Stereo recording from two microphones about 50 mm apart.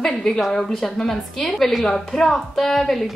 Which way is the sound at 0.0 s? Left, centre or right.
Centre.